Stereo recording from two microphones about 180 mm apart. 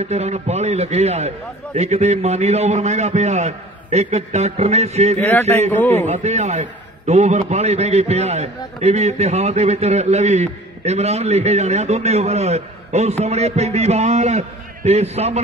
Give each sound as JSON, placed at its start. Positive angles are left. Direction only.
{"t": 0.0, "sound": "a man's voice", "side_deg": -40}
{"t": 5.8, "sound": "a man's voice", "side_deg": 10}
{"t": 6.0, "sound": "a man's voice", "side_deg": -40}